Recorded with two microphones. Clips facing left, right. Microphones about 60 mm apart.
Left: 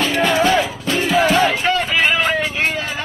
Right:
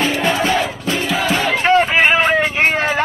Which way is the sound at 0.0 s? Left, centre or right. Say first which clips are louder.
Even; centre.